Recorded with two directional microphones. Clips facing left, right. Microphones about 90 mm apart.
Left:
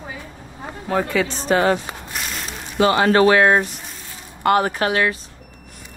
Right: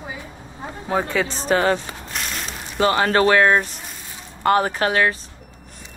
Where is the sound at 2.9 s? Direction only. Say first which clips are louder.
Left 2 dB; 35° left (ahead or behind).